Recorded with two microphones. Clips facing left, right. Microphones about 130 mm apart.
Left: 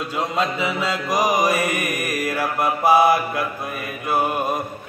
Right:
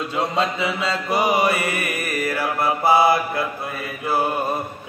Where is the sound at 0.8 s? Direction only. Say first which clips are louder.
Even; 10° left (ahead or behind).